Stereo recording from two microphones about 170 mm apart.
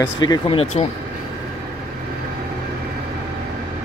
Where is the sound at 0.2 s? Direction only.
30° left (ahead or behind).